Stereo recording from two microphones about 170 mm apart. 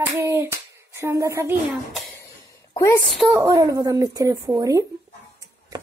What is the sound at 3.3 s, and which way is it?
A child's voice, 15° right (ahead or behind).